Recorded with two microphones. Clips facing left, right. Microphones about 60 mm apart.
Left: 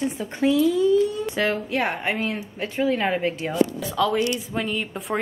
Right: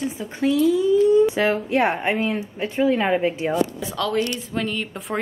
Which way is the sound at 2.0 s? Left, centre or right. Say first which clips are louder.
Right 3 dB; centre.